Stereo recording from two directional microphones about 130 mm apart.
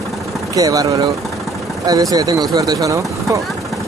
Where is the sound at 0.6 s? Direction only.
25° right (ahead or behind).